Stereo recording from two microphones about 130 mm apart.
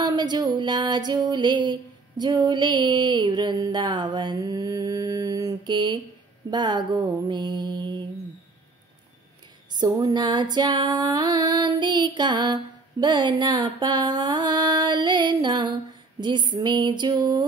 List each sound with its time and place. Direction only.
0.0 s female singing: 35° right (ahead or behind)
9.7 s female singing: 30° right (ahead or behind)